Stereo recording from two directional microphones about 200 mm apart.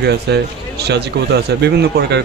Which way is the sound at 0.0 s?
55° right (ahead or behind).